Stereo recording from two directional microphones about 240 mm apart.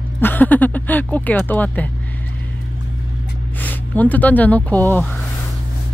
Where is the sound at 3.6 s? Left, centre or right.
Centre.